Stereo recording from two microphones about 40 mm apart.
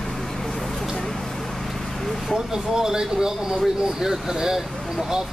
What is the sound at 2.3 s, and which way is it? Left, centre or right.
Speech, centre.